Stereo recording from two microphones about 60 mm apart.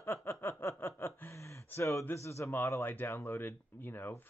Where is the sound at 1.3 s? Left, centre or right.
Left.